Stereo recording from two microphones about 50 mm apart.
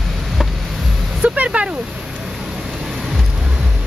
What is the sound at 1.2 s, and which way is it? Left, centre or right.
Music, right.